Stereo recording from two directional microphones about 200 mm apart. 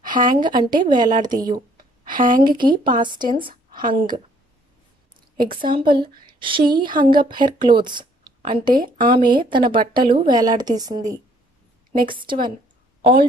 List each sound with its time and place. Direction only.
0.4 s a woman's voice: 20° right (ahead or behind)
2.0 s a woman's voice: 45° right (ahead or behind)
2.5 s a woman's voice: 25° right (ahead or behind)
5.7 s a woman's voice: 25° right (ahead or behind)
8.7 s speech: 45° right (ahead or behind)
9.1 s a woman's voice: 25° right (ahead or behind)
11.9 s a woman's voice: 45° right (ahead or behind)
12.2 s a woman's voice: 25° right (ahead or behind)